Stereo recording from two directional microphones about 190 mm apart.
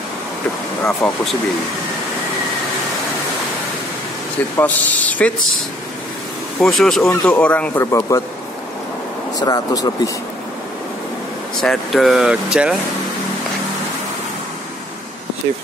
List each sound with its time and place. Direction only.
0.8 s speech: centre (ahead or behind)
4.6 s speech: 10° left (ahead or behind)
6.6 s speech: centre (ahead or behind)
9.4 s speech: 20° left (ahead or behind)
11.6 s speech: centre (ahead or behind)